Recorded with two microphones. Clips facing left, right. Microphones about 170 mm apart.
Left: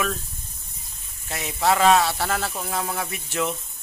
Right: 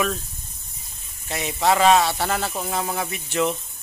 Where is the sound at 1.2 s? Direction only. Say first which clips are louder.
Right 1 dB; centre (ahead or behind).